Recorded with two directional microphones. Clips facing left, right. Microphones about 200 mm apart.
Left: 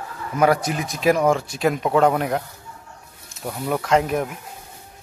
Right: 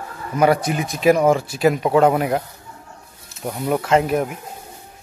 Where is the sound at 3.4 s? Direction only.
15° right (ahead or behind).